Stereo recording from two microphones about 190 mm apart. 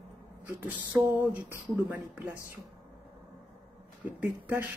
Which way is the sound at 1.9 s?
10° right (ahead or behind).